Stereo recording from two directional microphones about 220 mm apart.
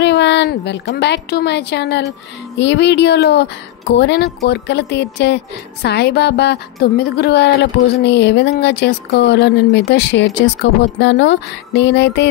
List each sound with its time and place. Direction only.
0.0 s speech: 50° left (ahead or behind)